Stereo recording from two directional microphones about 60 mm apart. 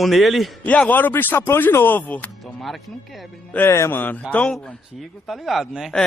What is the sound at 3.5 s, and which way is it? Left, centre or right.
Speech, left.